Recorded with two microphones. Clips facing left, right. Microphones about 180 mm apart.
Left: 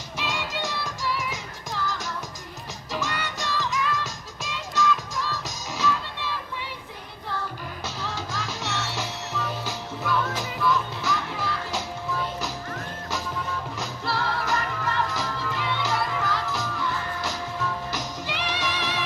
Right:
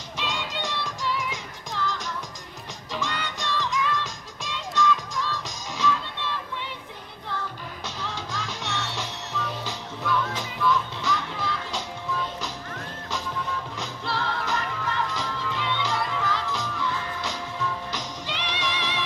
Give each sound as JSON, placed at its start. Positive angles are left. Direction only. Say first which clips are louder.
{"t": 0.2, "sound": "music", "louder": "left 1 dB", "side_deg": 5}
{"t": 2.9, "sound": "music", "louder": "left 1 dB", "side_deg": 5}
{"t": 7.8, "sound": "music", "louder": "left 1 dB", "side_deg": 5}
{"t": 13.7, "sound": "music", "louder": "left 1 dB", "side_deg": 5}